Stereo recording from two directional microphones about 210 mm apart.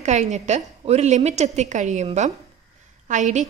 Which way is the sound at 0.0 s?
35° right (ahead or behind).